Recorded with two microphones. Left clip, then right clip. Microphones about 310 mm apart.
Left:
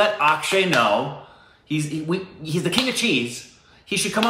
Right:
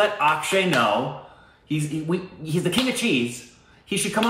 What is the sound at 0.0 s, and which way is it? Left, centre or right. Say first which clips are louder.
Speech: left 2 dB; centre.